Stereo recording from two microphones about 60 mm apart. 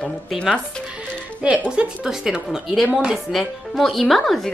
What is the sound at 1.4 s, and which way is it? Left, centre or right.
Speech, right.